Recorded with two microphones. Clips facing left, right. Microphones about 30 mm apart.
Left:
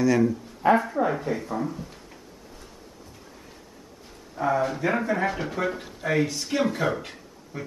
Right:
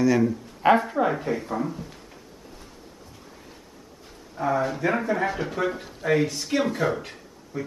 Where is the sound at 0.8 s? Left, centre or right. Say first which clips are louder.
Right 1 dB; right.